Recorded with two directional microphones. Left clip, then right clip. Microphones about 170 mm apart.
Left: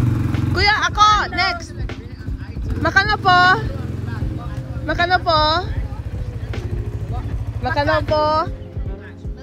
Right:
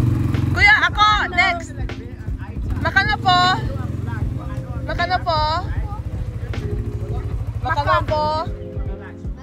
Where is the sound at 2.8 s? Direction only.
45° left (ahead or behind).